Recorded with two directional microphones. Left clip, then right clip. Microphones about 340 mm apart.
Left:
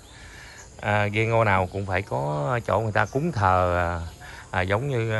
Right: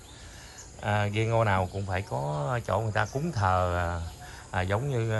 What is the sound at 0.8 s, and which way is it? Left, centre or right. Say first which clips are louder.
Speech: left 5 dB; centre.